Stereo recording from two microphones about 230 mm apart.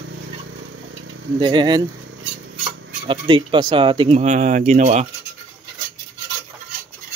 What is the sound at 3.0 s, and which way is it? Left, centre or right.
Speech, right.